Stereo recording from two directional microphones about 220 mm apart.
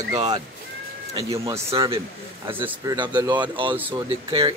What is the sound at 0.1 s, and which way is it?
Speech, 20° right (ahead or behind).